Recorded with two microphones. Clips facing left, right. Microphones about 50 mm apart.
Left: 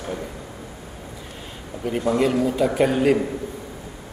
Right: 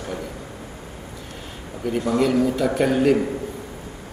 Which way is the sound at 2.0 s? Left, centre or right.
Left.